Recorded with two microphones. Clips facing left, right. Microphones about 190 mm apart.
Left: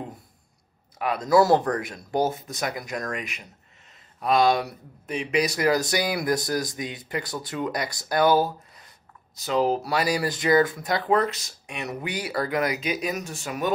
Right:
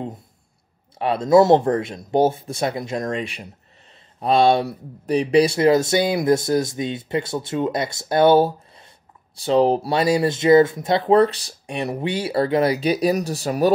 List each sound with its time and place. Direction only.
0.9 s speech: 30° right (ahead or behind)